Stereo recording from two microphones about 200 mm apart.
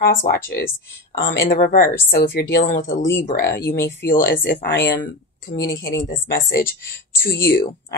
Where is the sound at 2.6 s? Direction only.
40° left (ahead or behind).